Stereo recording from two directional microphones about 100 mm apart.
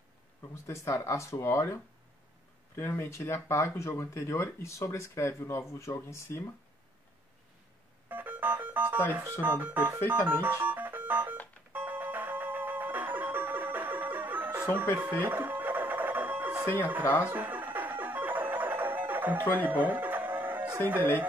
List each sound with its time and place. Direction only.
0.7 s speech: 30° left (ahead or behind)
8.1 s music: 20° right (ahead or behind)
9.4 s speech: 20° right (ahead or behind)
10.0 s music: 20° right (ahead or behind)